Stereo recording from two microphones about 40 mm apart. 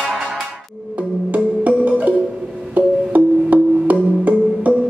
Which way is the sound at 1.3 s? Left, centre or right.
Right.